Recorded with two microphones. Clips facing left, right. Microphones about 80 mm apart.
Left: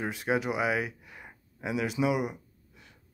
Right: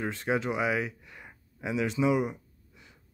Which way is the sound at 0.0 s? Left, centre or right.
Centre.